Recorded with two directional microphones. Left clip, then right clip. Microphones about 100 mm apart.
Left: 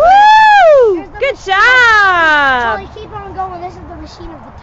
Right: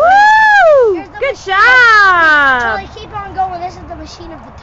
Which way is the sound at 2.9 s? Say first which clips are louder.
Right 4 dB; 50° right (ahead or behind).